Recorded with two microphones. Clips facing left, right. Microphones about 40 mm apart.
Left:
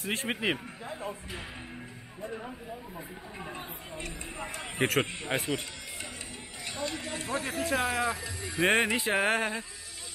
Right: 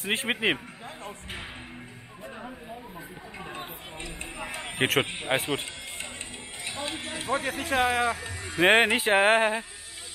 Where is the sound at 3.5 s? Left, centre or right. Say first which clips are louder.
Right 2 dB; right.